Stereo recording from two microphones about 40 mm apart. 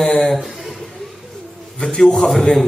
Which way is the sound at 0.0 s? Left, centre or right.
Centre.